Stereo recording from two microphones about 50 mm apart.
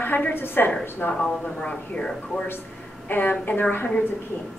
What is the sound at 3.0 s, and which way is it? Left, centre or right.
Speech, left.